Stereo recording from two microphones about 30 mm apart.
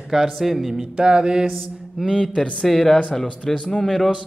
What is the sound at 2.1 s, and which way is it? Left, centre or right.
Speech, left.